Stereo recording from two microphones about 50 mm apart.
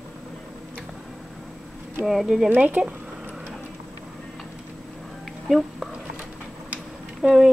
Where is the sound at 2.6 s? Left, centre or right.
Right.